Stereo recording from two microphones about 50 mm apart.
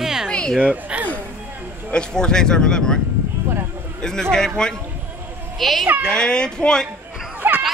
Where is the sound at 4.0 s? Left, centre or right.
Centre.